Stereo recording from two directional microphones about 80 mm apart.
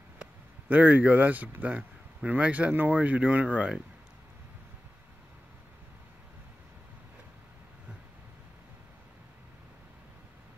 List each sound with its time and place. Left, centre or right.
0.2 s a man's voice: centre